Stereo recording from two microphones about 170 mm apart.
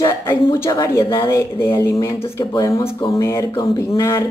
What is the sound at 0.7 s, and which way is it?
Speech, 20° left (ahead or behind).